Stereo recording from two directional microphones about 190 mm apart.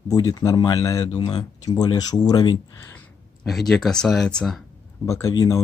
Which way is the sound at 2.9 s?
5° left (ahead or behind).